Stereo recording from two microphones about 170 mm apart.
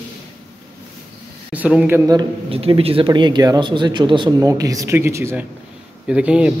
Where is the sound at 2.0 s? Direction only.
30° right (ahead or behind).